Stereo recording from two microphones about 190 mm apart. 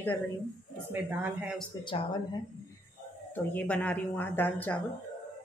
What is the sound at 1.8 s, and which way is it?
Speech, 25° left (ahead or behind).